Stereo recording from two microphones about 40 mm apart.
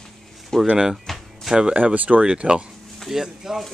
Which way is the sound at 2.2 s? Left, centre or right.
Centre.